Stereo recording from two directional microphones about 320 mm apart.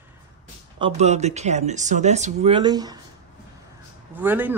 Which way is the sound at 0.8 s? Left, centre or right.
Right.